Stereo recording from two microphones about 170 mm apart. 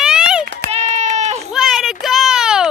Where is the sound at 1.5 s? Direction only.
Centre (ahead or behind).